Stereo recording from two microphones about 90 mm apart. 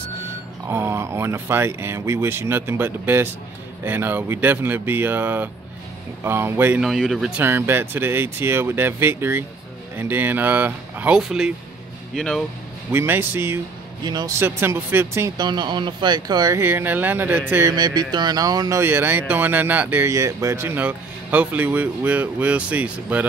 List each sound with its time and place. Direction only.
0.7 s speech: 30° right (ahead or behind)
6.8 s speech: centre (ahead or behind)
7.3 s speech: 25° right (ahead or behind)
11.1 s speech: 5° right (ahead or behind)
12.9 s speech: 25° right (ahead or behind)
14.0 s a sound: 50° right (ahead or behind)
14.4 s speech: 25° right (ahead or behind)
15.3 s speech: 55° right (ahead or behind)
16.5 s speech: 25° right (ahead or behind)
17.6 s a sound: 50° right (ahead or behind)
18.8 s speech: 25° right (ahead or behind)
20.1 s speech: 35° right (ahead or behind)
20.6 s speech: 20° right (ahead or behind)